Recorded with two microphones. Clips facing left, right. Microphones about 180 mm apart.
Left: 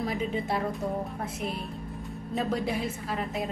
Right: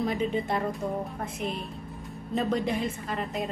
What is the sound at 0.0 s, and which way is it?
Speech, centre (ahead or behind).